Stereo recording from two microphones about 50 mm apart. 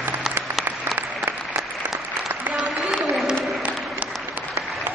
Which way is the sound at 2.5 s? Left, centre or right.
Centre.